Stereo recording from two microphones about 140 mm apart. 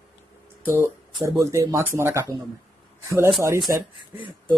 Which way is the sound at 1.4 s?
20° right (ahead or behind).